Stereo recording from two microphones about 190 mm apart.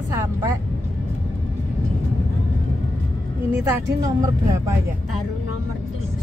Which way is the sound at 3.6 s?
20° right (ahead or behind).